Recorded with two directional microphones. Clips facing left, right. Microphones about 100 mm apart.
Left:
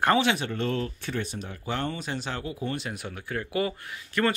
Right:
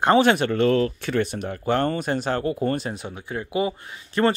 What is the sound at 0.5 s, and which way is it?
Speech, 85° right.